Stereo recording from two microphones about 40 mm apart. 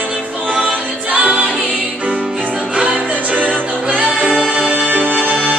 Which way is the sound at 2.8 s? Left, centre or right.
Right.